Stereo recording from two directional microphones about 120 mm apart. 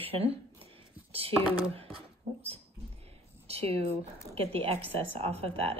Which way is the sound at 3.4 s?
55° right (ahead or behind).